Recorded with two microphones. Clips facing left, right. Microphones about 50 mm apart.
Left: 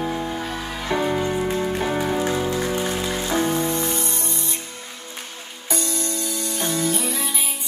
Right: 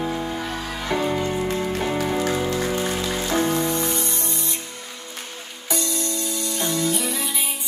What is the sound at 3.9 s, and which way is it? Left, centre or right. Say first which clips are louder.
Music: even; left.